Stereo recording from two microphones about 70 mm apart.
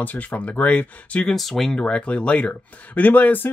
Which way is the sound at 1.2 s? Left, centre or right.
Centre.